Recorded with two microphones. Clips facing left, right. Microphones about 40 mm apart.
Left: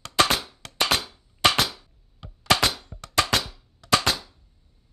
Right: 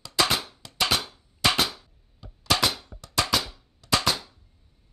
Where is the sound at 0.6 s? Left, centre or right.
Left.